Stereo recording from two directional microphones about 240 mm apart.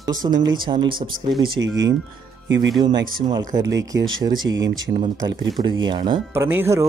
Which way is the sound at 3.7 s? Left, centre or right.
Right.